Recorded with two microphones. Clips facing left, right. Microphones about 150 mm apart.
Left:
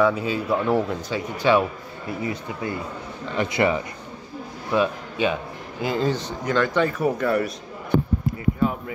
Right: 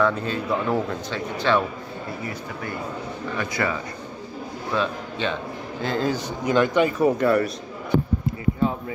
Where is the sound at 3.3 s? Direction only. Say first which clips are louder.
Left 5 dB; 25° left (ahead or behind).